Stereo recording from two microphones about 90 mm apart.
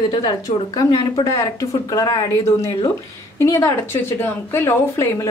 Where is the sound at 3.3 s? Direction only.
30° left (ahead or behind).